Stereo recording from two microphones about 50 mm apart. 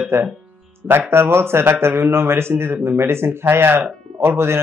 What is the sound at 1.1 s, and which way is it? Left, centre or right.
A man's voice, right.